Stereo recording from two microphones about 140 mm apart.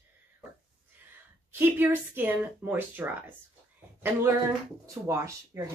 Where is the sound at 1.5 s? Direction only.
15° right (ahead or behind).